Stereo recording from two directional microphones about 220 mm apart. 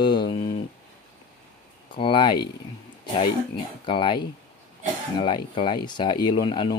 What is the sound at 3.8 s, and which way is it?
Speech, 20° left (ahead or behind).